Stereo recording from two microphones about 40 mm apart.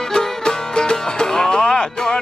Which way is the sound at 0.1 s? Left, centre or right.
Centre.